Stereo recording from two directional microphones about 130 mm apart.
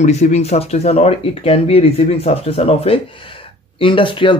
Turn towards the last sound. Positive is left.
turn(degrees=40)  # may be behind; listen again after turning